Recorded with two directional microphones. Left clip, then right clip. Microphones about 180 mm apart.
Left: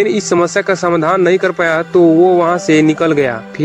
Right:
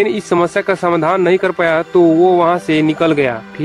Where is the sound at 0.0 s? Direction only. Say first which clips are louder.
Left 1 dB; 15° left (ahead or behind).